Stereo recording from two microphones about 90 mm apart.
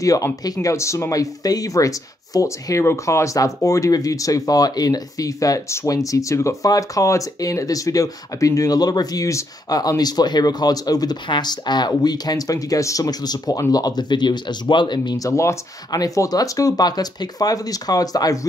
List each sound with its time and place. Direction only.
0.0 s speech: 40° left (ahead or behind); by 15.1 s 60° left (ahead or behind)
15.2 s speech: 35° left (ahead or behind)
15.9 s speech: 45° left (ahead or behind)